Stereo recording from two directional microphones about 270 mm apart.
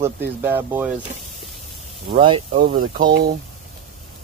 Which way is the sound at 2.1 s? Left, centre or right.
Centre.